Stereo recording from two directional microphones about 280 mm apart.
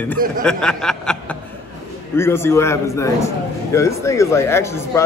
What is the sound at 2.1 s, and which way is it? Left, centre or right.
A man's voice, centre.